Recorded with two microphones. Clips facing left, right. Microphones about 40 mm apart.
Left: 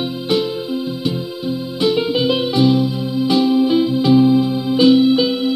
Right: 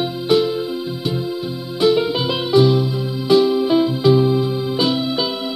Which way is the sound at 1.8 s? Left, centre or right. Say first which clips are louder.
Right 1 dB; left.